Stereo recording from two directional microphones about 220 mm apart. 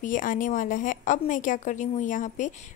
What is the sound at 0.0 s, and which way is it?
A woman's voice, 35° left (ahead or behind).